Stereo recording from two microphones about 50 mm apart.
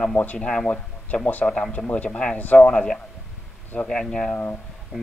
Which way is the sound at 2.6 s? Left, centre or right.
Centre.